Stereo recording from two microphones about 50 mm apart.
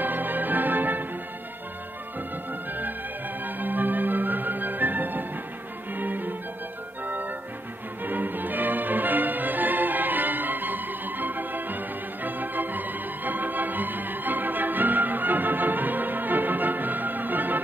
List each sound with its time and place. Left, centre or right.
0.0 s music: right
3.4 s music: right